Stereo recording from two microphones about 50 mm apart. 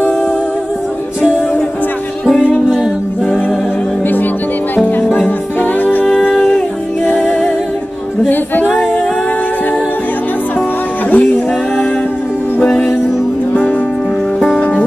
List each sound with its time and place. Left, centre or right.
4.7 s music: left
8.3 s music: left
11.1 s music: left
14.6 s music: left